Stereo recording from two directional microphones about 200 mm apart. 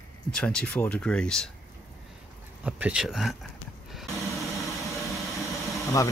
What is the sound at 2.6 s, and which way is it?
Speech, 5° right (ahead or behind).